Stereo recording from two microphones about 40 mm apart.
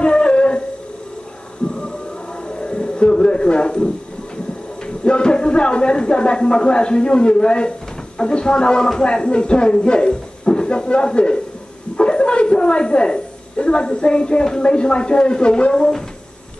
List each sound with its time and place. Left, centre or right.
0.0 s a sound: left
2.4 s music: left
4.8 s a woman's voice: left